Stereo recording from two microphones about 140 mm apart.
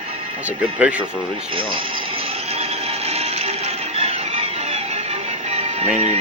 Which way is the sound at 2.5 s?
45° right (ahead or behind).